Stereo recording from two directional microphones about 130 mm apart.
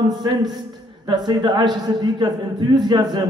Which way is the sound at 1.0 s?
35° right (ahead or behind).